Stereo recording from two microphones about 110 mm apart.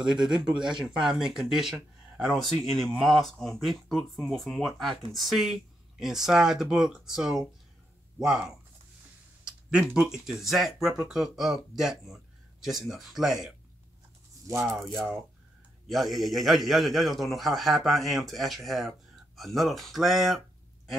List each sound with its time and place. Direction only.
0.3 s speech: 5° right (ahead or behind)
14.5 s speech: 25° right (ahead or behind)
14.8 s speech: centre (ahead or behind)